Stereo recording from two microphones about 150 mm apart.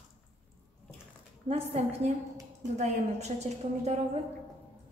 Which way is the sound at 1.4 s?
45° right (ahead or behind).